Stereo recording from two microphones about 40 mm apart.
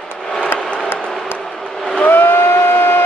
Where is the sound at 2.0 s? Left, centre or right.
Left.